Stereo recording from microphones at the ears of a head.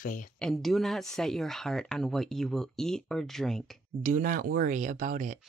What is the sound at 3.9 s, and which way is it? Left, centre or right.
Speech, right.